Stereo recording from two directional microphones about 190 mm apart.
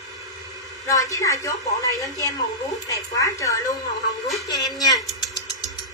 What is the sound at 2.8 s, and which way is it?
A woman's voice, 15° left (ahead or behind).